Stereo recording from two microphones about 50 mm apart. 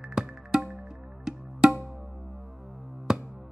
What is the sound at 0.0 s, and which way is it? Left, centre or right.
Music, centre.